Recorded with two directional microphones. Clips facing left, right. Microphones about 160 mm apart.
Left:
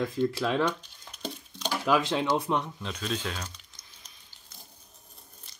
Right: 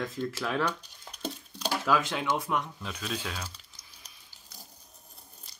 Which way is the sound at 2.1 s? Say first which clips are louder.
Left 3 dB; 25° left (ahead or behind).